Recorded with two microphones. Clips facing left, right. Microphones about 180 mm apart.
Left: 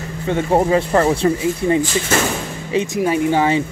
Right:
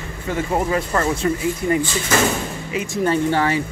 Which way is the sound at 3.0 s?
15° left (ahead or behind).